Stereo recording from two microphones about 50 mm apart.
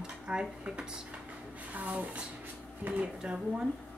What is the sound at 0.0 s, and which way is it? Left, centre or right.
Speech, centre.